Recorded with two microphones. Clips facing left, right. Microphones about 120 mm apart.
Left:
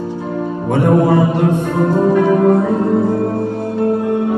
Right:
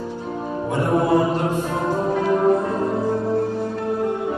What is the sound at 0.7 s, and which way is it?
Music, 65° left (ahead or behind).